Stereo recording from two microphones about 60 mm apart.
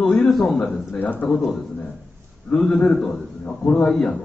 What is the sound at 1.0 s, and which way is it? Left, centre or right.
Speech, left.